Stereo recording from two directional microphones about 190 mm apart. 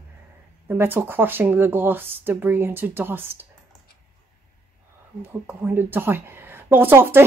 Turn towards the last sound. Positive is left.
turn(degrees=-10)  # may be behind; listen again after turning